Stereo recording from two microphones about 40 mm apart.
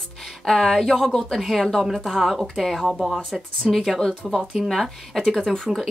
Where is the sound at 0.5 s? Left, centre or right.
Centre.